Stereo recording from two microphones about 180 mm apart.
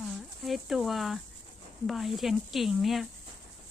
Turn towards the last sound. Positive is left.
turn(degrees=0)  # may be behind; listen again after turning